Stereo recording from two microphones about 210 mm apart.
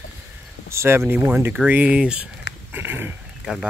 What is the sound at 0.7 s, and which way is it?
Speech, 10° right (ahead or behind).